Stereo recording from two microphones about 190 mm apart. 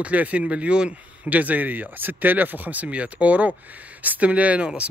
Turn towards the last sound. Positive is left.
turn(degrees=-5)  # may be behind; listen again after turning